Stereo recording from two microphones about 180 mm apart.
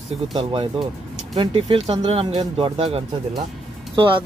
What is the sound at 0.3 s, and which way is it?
Speech, 30° right (ahead or behind).